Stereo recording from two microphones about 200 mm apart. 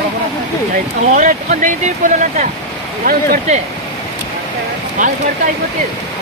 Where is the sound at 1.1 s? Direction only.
40° right (ahead or behind).